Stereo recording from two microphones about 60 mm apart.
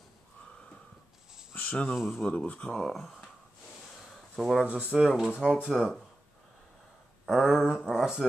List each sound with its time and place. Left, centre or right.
1.6 s cricket: left
2.0 s speech: centre
2.2 s speech: left
2.7 s speech: centre
4.1 s a sound: centre
4.6 s speech: right
5.0 s speech: centre
7.2 s speech: centre